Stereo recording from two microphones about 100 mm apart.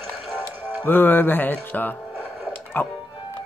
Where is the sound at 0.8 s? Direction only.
20° left (ahead or behind).